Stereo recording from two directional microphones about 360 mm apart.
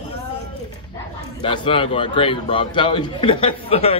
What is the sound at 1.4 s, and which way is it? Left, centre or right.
A man's voice, centre.